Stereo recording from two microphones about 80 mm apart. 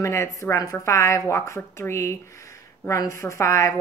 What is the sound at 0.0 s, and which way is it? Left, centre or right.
Speech, left.